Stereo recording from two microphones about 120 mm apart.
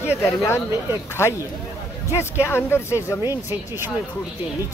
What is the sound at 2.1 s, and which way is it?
Speech, 20° left (ahead or behind).